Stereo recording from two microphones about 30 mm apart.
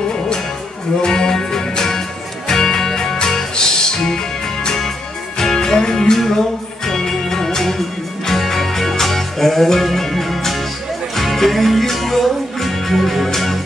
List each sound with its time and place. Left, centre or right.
1.0 s music: left; by 13.6 s centre